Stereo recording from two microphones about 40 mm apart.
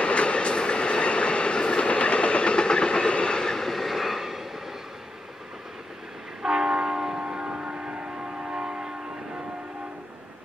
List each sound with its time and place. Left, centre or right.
0.0 s train: left; by 4.5 s centre
6.4 s train: centre; by 8.1 s right
8.5 s train: right